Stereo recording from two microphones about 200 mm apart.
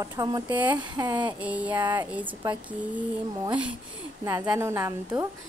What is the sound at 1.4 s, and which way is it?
A woman's voice, 5° right (ahead or behind).